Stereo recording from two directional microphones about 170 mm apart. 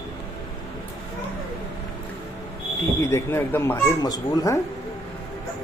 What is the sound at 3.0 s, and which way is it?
Speech, 15° left (ahead or behind).